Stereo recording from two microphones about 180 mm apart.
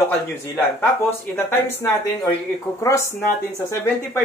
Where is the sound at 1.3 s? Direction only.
10° left (ahead or behind).